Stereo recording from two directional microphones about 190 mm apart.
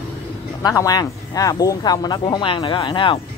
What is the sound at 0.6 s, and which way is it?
Speech, 20° left (ahead or behind).